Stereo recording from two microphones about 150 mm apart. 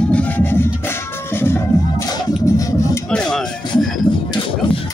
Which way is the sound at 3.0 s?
5° left (ahead or behind).